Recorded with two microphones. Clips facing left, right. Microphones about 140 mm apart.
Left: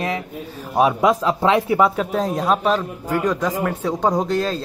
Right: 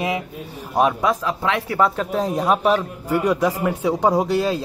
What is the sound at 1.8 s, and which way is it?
A man's voice, centre (ahead or behind).